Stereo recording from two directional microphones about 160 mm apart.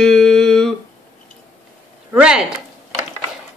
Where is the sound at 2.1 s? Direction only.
5° right (ahead or behind).